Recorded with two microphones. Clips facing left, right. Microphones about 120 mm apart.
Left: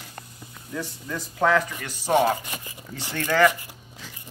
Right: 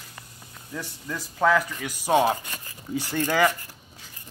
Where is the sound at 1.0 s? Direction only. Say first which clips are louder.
Right 1 dB; 5° right (ahead or behind).